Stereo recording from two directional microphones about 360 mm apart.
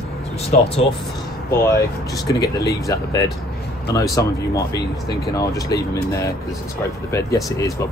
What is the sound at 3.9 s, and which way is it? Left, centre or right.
Speech, centre.